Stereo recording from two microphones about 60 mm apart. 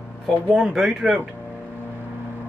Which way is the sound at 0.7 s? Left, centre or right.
Centre.